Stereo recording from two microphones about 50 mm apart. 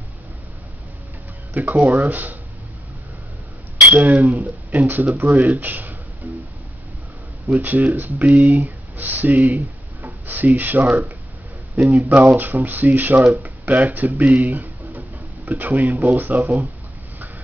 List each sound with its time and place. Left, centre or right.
1.5 s speech: right
3.9 s speech: right
6.2 s music: right
7.4 s speech: right